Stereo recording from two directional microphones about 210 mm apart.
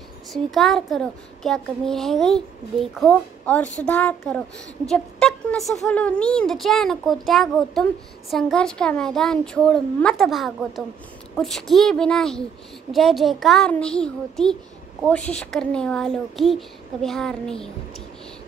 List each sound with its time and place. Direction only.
0.3 s speech: centre (ahead or behind)